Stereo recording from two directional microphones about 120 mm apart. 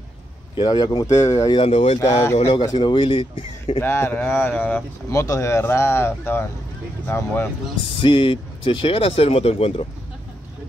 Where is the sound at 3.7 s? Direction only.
20° left (ahead or behind).